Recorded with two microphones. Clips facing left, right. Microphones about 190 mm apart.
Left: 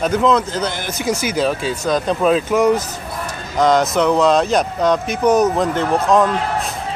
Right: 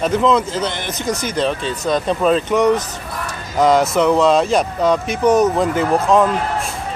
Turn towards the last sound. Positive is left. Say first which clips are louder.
# right 1 dB
turn(degrees=-5)  # may be behind; listen again after turning